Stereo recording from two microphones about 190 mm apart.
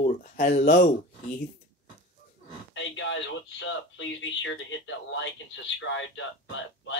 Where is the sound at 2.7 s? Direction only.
75° left (ahead or behind).